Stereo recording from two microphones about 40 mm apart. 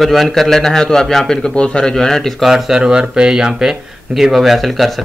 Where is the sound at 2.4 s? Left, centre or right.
Centre.